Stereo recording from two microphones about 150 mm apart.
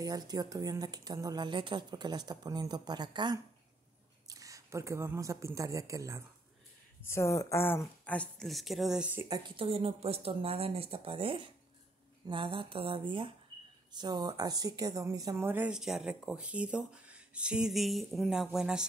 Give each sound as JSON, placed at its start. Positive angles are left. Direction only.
{"t": 0.0, "sound": "speech", "side_deg": -25}
{"t": 7.1, "sound": "a woman's voice", "side_deg": 20}
{"t": 9.6, "sound": "speech", "side_deg": -40}